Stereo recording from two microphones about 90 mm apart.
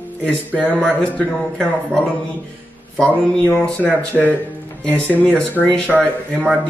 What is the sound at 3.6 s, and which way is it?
Speech, 15° left (ahead or behind).